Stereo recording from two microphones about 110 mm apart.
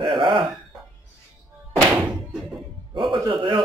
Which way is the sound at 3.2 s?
45° right (ahead or behind).